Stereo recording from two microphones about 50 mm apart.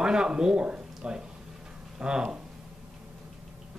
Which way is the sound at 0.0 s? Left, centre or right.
Centre.